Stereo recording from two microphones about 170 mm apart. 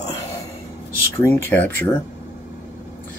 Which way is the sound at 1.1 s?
15° left (ahead or behind).